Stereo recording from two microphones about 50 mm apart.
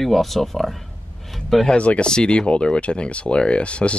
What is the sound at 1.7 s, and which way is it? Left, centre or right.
Speech, left.